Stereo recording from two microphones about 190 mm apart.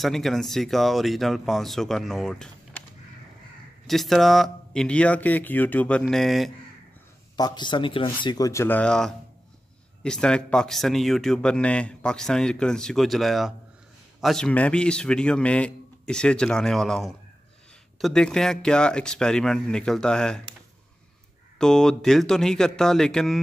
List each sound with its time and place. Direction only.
0.0 s speech: centre (ahead or behind)
3.8 s speech: centre (ahead or behind)
7.3 s speech: 20° left (ahead or behind); by 20.4 s 5° left (ahead or behind)
21.5 s speech: 5° left (ahead or behind)